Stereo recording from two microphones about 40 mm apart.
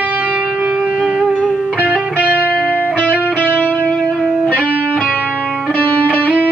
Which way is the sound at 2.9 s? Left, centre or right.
Left.